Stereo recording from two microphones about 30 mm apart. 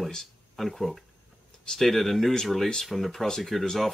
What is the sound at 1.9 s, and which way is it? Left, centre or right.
Speech, centre.